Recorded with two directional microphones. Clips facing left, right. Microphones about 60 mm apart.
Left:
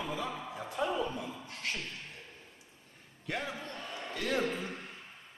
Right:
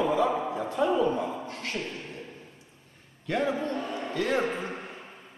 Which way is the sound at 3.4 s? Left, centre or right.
Right.